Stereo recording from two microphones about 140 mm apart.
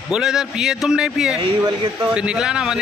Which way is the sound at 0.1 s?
5° right (ahead or behind).